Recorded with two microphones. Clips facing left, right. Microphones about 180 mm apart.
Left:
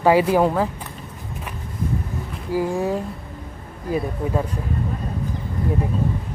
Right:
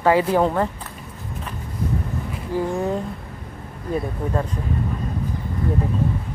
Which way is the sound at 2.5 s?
10° left (ahead or behind).